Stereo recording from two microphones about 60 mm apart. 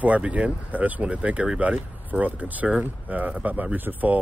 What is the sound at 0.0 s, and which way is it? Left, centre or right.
Speech, right.